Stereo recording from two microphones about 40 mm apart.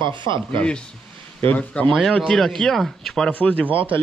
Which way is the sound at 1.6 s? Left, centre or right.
Left.